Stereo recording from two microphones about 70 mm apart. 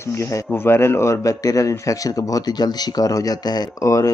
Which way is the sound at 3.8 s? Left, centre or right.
Left.